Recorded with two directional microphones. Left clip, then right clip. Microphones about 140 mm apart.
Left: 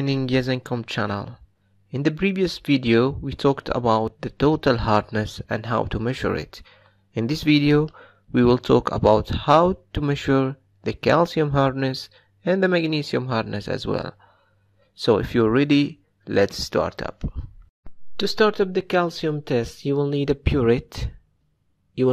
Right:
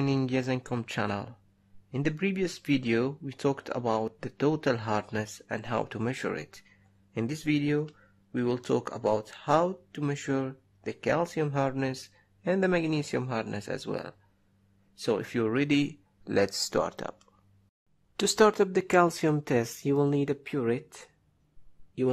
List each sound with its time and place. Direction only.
0.3 s speech: 20° left (ahead or behind)
15.9 s speech: 10° left (ahead or behind)
20.4 s speech: 30° left (ahead or behind)